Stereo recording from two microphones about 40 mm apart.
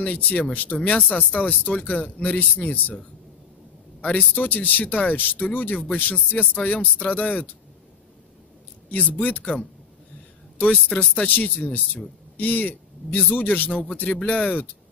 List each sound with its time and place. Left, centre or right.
0.0 s speech: left
4.0 s speech: left
8.9 s speech: left
10.7 s speech: left